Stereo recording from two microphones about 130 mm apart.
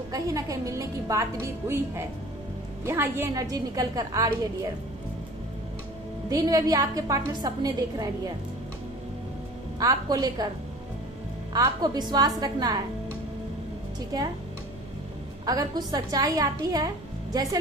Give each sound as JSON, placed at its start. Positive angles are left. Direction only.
{"t": 0.1, "sound": "a woman's voice", "side_deg": -25}
{"t": 6.3, "sound": "a woman's voice", "side_deg": -30}
{"t": 9.8, "sound": "a woman's voice", "side_deg": -30}
{"t": 11.5, "sound": "a woman's voice", "side_deg": -30}
{"t": 15.4, "sound": "a woman's voice", "side_deg": -30}